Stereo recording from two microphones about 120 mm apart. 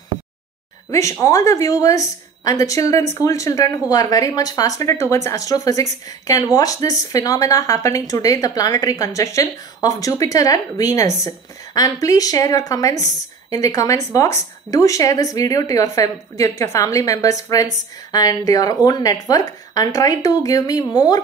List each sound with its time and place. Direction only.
0.8 s speech: 25° left (ahead or behind)